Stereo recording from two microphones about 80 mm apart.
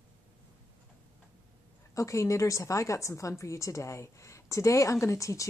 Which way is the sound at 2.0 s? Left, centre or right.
Left.